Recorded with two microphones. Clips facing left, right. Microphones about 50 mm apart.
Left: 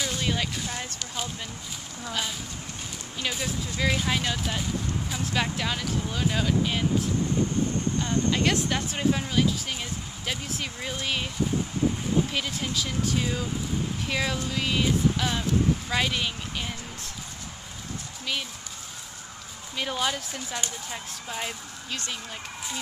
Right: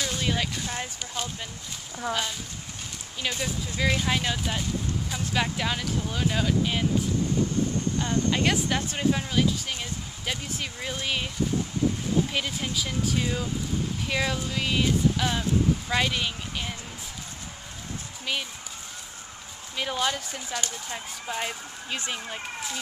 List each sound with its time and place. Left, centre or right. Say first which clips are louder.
0.0 s speech: even; centre
3.2 s speech: even; centre
8.3 s speech: even; centre
12.3 s speech: even; centre
15.9 s a sound: right 1 dB; centre
19.8 s speech: right 1 dB; centre
21.9 s speech: right 2 dB; centre